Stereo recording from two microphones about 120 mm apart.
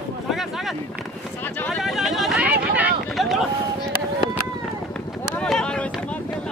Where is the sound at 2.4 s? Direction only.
15° right (ahead or behind).